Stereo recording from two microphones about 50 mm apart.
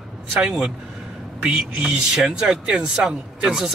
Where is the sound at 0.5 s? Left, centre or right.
Centre.